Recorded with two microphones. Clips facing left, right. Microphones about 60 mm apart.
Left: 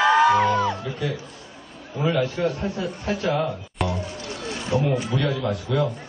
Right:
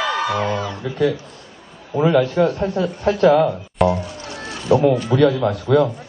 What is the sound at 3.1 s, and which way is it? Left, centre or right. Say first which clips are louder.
Speech: right 11 dB; right.